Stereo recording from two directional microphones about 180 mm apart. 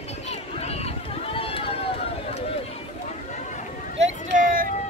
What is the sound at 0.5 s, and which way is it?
Run, 35° left (ahead or behind).